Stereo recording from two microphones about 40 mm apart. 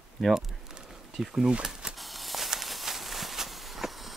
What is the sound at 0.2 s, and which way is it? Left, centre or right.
Speech, centre.